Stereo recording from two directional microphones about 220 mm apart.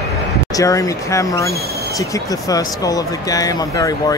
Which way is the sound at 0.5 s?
15° left (ahead or behind).